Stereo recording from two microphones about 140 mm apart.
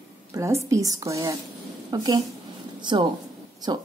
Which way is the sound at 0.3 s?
20° right (ahead or behind).